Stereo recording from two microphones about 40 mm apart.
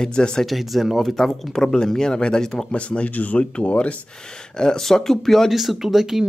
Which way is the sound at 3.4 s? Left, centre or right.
Left.